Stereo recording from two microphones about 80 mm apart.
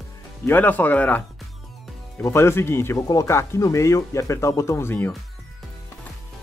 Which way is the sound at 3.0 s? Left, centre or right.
Left.